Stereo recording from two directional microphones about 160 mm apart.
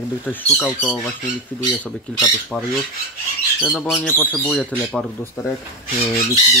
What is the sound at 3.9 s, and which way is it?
Speech, 10° left (ahead or behind).